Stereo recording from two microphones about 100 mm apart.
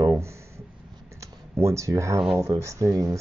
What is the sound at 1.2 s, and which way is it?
Speech, 30° right (ahead or behind).